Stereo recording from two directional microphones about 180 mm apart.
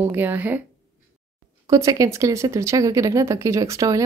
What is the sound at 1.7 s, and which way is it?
Speech, 20° right (ahead or behind).